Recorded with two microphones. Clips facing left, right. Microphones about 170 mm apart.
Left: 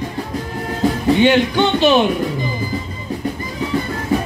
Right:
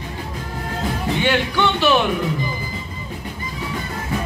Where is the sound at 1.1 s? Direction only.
20° left (ahead or behind).